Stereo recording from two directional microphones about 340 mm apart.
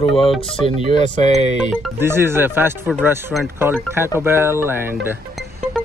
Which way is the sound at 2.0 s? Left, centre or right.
Centre.